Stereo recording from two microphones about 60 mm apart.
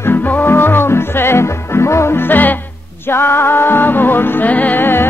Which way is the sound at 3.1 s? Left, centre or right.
Left.